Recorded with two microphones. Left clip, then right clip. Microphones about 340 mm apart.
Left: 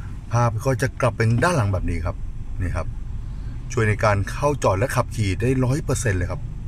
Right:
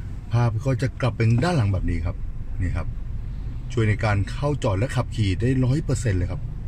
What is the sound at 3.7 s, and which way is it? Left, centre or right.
Speech, centre.